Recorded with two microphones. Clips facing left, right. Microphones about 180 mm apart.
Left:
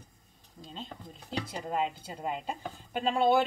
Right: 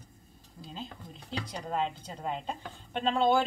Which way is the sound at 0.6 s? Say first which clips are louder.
Right 1 dB; 5° right (ahead or behind).